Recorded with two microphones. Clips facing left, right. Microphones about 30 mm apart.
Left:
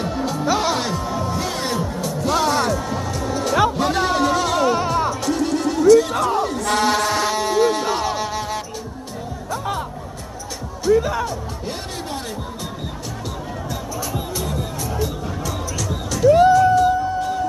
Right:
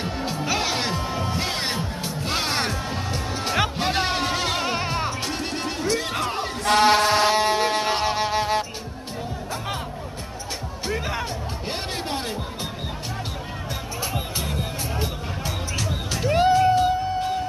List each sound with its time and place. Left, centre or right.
0.0 s music: centre
0.8 s music: right
10.9 s music: right
14.1 s music: right